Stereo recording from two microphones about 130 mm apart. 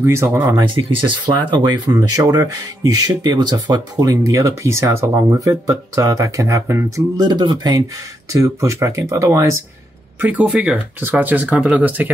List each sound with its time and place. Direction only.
0.0 s speech: 20° right (ahead or behind)
0.6 s speech: 40° right (ahead or behind); by 7.2 s 20° right (ahead or behind)
7.2 s speech: 35° right (ahead or behind)
10.3 s speech: 10° right (ahead or behind)